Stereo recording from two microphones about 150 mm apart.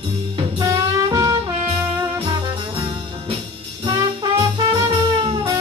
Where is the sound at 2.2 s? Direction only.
35° right (ahead or behind).